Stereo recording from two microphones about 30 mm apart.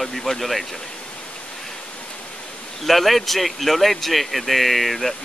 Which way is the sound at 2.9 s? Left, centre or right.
Centre.